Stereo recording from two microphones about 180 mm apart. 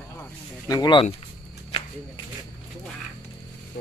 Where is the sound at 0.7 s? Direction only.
25° left (ahead or behind).